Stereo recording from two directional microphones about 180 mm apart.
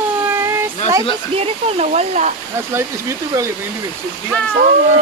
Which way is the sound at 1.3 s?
35° right (ahead or behind).